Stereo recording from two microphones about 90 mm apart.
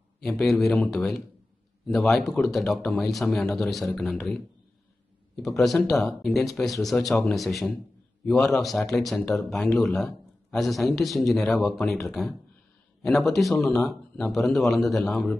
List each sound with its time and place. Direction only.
0.2 s a man's voice: 5° left (ahead or behind)